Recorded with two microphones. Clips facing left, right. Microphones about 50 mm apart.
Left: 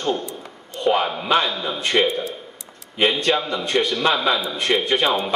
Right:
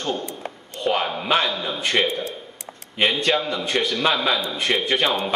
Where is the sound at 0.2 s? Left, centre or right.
Right.